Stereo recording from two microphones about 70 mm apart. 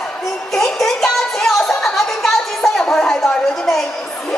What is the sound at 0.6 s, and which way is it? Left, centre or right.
Music, centre.